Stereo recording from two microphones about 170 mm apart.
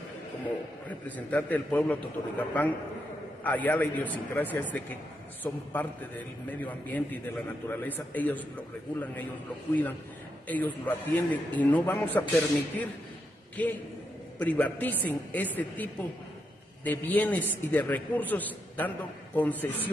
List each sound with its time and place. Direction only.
0.8 s a man's voice: 10° left (ahead or behind)
10.5 s a man's voice: 10° left (ahead or behind)